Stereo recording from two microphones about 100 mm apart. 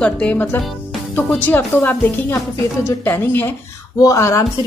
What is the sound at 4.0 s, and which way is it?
Speech, 30° left (ahead or behind).